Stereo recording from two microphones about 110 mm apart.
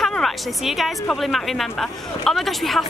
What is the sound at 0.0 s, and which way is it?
A woman's voice, centre (ahead or behind).